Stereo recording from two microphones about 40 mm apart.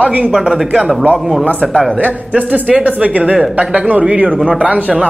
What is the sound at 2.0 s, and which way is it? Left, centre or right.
A man's voice, right.